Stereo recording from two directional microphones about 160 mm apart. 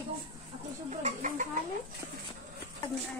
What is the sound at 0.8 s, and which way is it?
Chicken, 50° right (ahead or behind).